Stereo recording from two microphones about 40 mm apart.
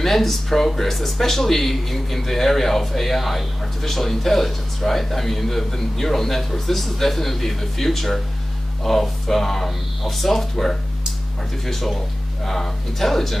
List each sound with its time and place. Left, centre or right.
0.0 s speech: centre